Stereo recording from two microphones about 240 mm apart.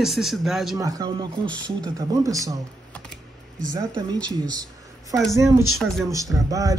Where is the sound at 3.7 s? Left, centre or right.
Centre.